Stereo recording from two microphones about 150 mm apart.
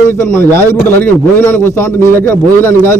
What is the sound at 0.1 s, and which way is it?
A man's voice, 15° left (ahead or behind).